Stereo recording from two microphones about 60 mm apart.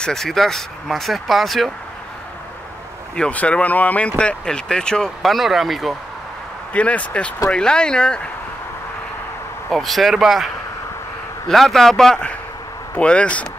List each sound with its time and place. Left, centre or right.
0.0 s speech: centre
3.2 s speech: left
5.2 s speech: centre
6.7 s speech: left
9.7 s speech: centre; by 13.5 s left